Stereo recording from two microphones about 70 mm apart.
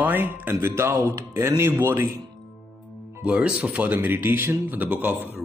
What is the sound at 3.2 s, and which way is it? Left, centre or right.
Speech, centre.